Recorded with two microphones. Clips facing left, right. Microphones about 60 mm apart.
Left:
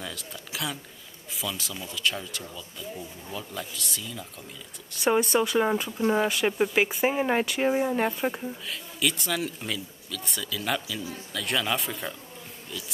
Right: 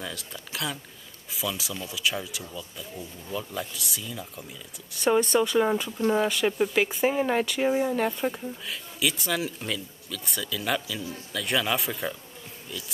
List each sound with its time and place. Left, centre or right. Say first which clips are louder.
0.0 s speech: right 1 dB; centre
8.6 s speech: right 1 dB; centre